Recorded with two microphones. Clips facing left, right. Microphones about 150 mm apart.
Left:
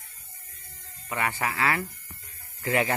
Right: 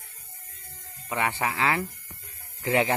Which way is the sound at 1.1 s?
15° right (ahead or behind).